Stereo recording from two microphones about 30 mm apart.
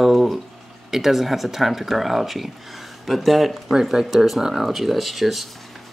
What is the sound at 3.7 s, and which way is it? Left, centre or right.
Speech, centre.